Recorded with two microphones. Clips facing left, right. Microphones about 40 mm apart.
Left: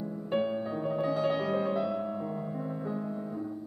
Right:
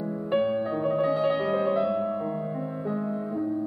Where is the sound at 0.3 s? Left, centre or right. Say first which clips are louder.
Right 5 dB; centre.